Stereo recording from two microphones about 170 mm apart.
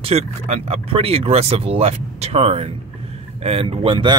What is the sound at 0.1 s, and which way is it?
Speech, 35° right (ahead or behind).